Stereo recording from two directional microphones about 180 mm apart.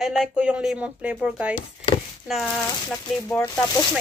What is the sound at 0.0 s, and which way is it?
A woman's voice, centre (ahead or behind).